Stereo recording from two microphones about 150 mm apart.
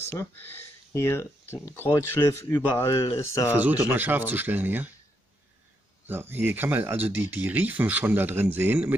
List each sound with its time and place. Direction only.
0.0 s speech: 15° left (ahead or behind)
3.5 s speech: 10° right (ahead or behind)
6.0 s speech: 15° right (ahead or behind)